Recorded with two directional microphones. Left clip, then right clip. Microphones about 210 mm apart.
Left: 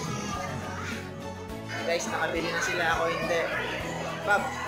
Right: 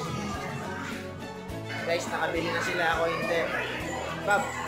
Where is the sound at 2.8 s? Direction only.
5° right (ahead or behind).